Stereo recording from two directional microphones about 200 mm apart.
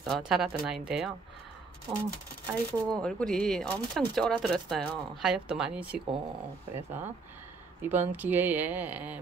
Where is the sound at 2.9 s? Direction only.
5° left (ahead or behind).